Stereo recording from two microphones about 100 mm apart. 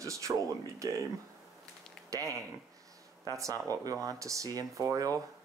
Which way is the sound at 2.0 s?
35° right (ahead or behind).